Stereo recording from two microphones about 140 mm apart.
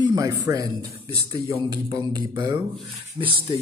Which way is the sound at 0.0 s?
25° right (ahead or behind).